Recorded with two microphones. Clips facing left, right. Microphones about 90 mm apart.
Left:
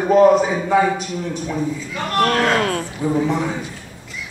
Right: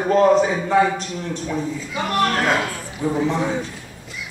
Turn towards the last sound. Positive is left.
turn(degrees=0)  # may be behind; listen again after turning